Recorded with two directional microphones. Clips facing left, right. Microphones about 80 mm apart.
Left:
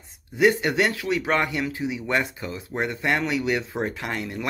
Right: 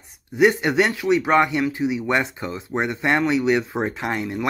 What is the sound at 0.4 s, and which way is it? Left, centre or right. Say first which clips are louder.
Speech: right 3 dB; right.